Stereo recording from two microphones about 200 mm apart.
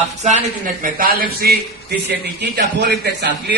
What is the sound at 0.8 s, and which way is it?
A man's voice, 45° right (ahead or behind).